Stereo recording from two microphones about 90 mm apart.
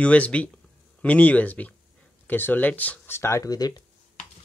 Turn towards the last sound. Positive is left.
turn(degrees=45)  # may be behind; listen again after turning